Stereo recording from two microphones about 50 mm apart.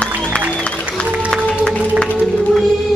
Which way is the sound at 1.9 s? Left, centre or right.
Left.